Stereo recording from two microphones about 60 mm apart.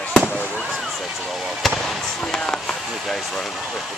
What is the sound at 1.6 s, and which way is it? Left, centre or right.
Speech, centre.